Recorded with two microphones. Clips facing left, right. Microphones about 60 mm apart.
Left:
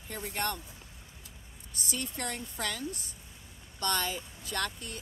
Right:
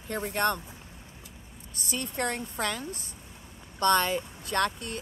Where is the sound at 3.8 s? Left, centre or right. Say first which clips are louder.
Right 8 dB; right.